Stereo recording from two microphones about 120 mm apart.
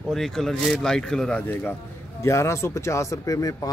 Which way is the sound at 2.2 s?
20° left (ahead or behind).